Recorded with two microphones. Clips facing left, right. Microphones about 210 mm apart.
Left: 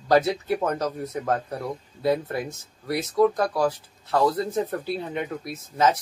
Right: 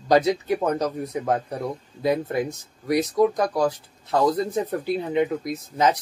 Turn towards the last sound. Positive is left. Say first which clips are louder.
# right 1 dB
turn(degrees=-15)  # may be behind; listen again after turning